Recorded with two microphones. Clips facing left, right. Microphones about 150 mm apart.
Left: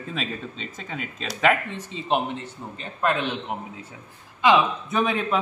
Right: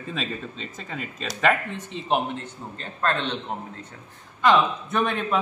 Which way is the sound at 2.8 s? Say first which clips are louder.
Left 2 dB; 10° left (ahead or behind).